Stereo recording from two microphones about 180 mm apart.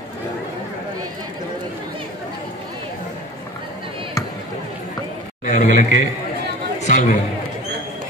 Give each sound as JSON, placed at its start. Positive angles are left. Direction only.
{"t": 5.4, "sound": "a man's voice", "side_deg": 45}